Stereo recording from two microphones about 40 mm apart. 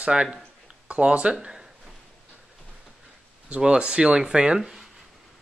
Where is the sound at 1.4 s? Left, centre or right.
Centre.